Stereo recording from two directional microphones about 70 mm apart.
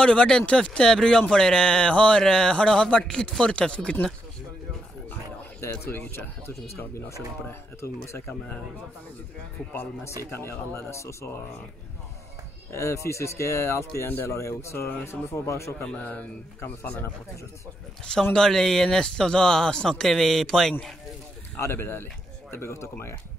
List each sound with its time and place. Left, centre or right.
0.0 s speech: centre
5.6 s speech: left
10.0 s speech: left
12.7 s speech: left
15.8 s a man's voice: left
18.3 s speech: centre
21.5 s speech: left